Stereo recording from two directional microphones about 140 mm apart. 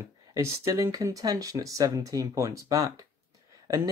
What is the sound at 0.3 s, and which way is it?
Speech, 25° right (ahead or behind).